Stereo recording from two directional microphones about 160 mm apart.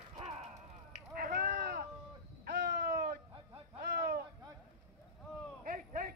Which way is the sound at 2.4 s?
90° right.